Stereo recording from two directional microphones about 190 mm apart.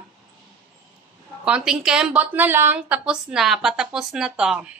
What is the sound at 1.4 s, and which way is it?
A woman's voice, 5° right (ahead or behind).